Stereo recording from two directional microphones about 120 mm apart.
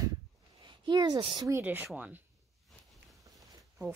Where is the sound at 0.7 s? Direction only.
40° right (ahead or behind).